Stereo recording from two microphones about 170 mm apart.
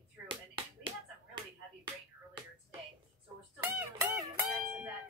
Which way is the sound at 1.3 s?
25° right (ahead or behind).